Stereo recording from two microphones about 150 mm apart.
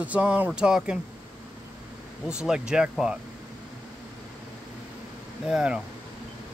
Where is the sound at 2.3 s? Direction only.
5° right (ahead or behind).